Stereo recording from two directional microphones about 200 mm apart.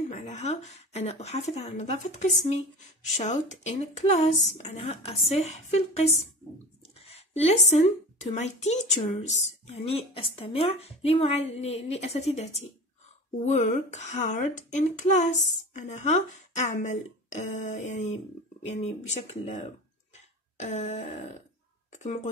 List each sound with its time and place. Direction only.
0.1 s a woman's voice: 35° left (ahead or behind)